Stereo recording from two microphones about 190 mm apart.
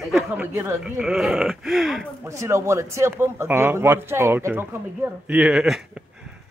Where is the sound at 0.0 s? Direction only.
5° right (ahead or behind).